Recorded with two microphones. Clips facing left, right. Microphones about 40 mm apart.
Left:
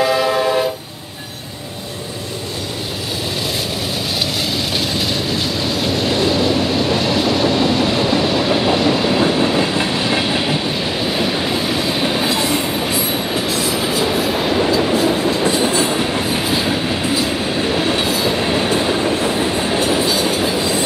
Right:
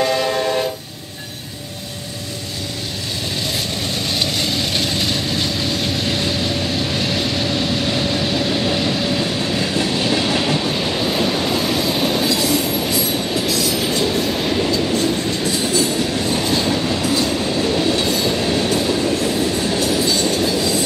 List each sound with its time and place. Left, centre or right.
0.0 s train: centre
4.5 s vehicle: centre
9.2 s train: left
13.8 s train: centre
15.4 s train: left
20.1 s train: centre
20.4 s train: left